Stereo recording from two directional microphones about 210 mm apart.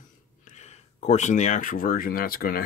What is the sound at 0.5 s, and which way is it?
Speech, 30° left (ahead or behind).